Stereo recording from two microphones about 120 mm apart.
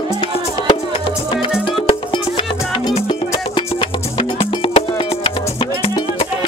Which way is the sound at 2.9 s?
50° left (ahead or behind).